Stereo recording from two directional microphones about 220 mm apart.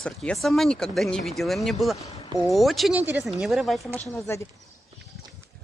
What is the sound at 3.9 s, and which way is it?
Speech, 15° left (ahead or behind).